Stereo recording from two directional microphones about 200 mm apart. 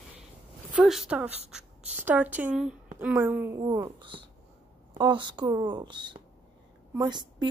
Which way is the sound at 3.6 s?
25° right (ahead or behind).